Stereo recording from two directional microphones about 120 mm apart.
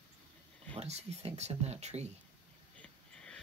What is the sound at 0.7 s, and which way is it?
Speech, 60° right (ahead or behind).